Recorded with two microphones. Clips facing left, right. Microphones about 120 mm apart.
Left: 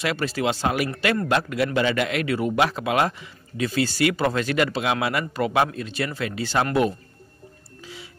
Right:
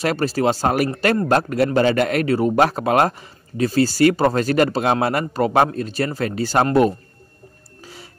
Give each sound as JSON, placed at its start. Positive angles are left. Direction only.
{"t": 0.0, "sound": "a man's voice", "side_deg": -40}
{"t": 7.8, "sound": "music", "side_deg": -45}